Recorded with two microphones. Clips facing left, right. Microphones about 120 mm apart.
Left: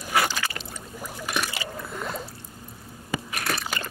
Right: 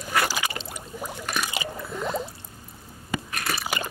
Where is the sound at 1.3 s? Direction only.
15° right (ahead or behind).